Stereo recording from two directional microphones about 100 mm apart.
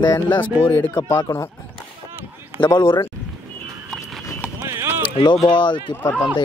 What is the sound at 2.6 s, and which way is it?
Speech, 45° left (ahead or behind).